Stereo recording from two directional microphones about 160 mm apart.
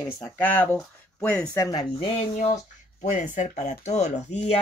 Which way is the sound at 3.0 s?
50° left (ahead or behind).